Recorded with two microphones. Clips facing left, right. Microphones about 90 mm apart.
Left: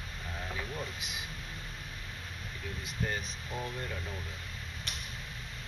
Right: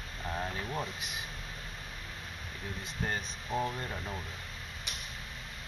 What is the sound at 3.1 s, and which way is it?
Speech, 30° right (ahead or behind).